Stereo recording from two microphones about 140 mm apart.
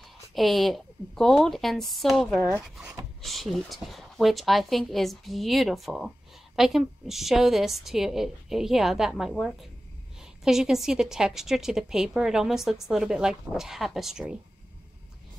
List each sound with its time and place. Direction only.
0.3 s a woman's voice: centre (ahead or behind)